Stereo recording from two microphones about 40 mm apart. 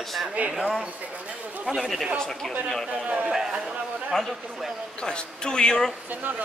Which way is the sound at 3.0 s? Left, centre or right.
Right.